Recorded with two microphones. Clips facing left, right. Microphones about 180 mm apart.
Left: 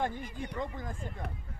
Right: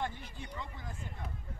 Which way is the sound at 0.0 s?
50° left (ahead or behind).